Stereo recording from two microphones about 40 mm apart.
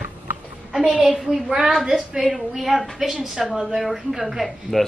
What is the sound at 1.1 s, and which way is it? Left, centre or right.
A woman's voice, centre.